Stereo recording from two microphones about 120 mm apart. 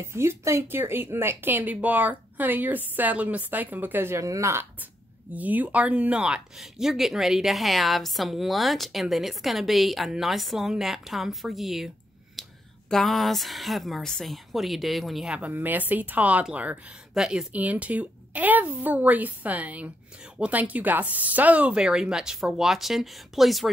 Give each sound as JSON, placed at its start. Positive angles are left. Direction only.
{"t": 0.0, "sound": "speech", "side_deg": -20}
{"t": 5.3, "sound": "speech", "side_deg": -15}
{"t": 12.4, "sound": "a sound", "side_deg": 0}
{"t": 12.9, "sound": "speech", "side_deg": 0}